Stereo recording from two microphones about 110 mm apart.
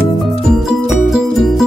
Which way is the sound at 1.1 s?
Centre (ahead or behind).